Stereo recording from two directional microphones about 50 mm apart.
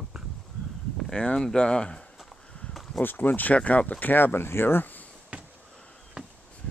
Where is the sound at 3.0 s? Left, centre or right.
Left.